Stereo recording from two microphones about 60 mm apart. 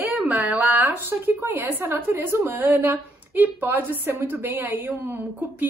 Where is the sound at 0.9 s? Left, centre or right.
Right.